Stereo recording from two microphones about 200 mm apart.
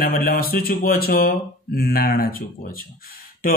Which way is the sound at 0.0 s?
45° left (ahead or behind).